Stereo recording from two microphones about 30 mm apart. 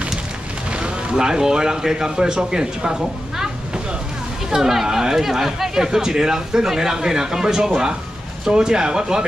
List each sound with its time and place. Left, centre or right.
0.7 s a sound: right
1.1 s a woman's voice: right
4.6 s speech: centre